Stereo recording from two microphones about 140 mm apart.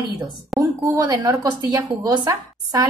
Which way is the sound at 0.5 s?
Centre (ahead or behind).